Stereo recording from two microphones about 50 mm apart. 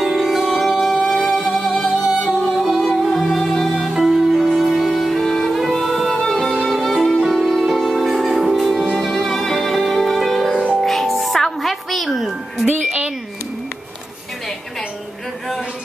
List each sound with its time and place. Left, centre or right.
0.0 s music: centre
1.1 s music: centre
12.6 s music: right